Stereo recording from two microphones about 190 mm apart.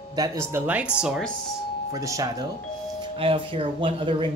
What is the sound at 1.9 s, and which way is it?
Speech, 15° right (ahead or behind).